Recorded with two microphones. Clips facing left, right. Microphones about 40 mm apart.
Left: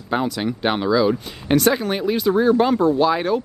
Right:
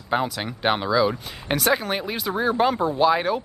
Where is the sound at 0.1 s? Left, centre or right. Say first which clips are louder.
Left 3 dB; centre.